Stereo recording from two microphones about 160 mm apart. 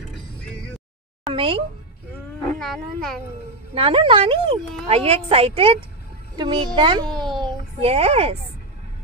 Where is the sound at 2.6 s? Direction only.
Centre (ahead or behind).